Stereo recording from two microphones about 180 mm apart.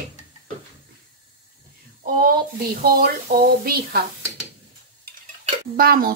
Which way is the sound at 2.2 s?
55° right (ahead or behind).